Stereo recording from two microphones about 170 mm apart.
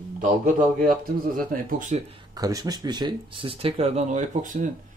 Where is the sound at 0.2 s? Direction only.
55° right (ahead or behind).